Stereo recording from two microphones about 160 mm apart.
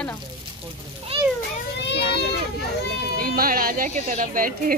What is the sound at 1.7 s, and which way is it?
Children playing, 90° left.